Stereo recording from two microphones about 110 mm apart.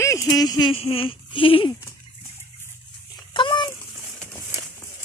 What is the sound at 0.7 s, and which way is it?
Speech, 60° left (ahead or behind).